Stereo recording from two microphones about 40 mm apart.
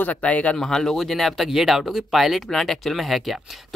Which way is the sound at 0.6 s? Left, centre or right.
Centre.